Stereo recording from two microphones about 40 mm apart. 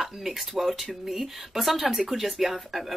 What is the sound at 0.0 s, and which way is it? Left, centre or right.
Speech, centre.